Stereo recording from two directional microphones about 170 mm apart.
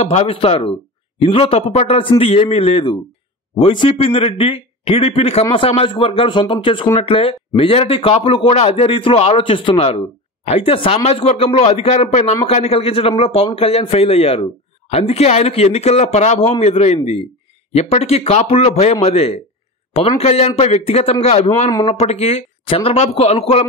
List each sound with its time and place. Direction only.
0.0 s a man's voice: 40° left (ahead or behind)